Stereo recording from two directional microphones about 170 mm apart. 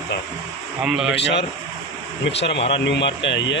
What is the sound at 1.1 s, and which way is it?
Speech, 90° left.